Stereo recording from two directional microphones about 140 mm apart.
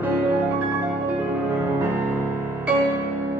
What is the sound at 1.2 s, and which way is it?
Music, 15° right (ahead or behind).